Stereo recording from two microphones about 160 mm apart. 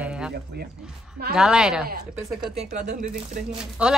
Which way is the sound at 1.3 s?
5° right (ahead or behind).